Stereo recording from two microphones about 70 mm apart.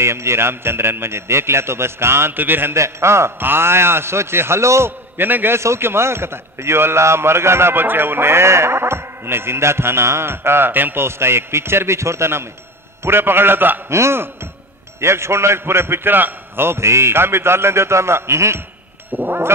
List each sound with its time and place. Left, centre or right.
0.0 s a man's voice: right
2.7 s a man's voice: right
19.1 s cat: right